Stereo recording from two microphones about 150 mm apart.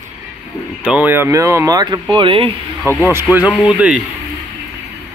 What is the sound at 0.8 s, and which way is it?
Speech, 10° right (ahead or behind).